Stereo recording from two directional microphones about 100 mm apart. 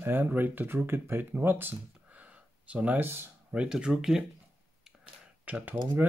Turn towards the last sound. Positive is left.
turn(degrees=-15)  # may be behind; listen again after turning